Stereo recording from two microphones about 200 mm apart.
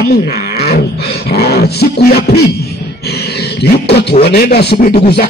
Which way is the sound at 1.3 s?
55° left (ahead or behind).